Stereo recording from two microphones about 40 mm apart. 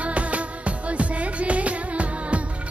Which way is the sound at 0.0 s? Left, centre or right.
Right.